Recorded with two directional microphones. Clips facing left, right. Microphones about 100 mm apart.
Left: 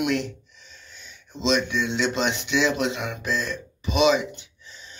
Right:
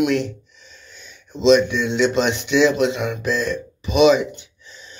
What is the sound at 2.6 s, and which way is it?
Speech, 40° left (ahead or behind).